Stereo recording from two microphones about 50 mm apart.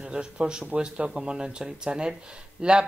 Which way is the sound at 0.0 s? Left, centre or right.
Centre.